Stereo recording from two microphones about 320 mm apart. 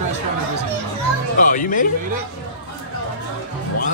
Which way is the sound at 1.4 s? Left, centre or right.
Left.